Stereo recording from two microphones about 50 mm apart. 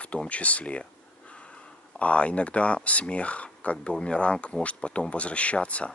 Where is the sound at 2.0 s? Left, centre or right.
Left.